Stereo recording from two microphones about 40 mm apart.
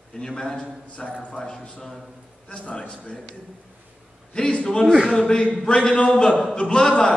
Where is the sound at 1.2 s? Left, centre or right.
Left.